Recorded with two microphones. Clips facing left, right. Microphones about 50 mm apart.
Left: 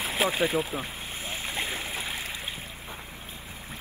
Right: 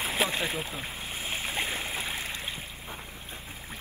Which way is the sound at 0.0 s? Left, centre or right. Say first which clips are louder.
Left 3 dB; centre.